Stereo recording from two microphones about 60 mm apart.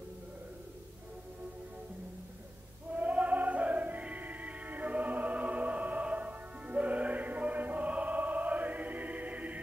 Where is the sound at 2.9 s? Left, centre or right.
Right.